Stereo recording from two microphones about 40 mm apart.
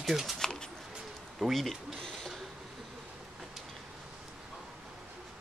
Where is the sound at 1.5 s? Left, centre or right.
Centre.